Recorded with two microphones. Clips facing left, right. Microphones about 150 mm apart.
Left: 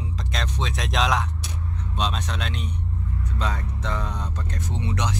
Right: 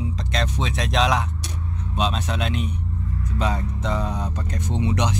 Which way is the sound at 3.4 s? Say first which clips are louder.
Right 5 dB; 15° right (ahead or behind).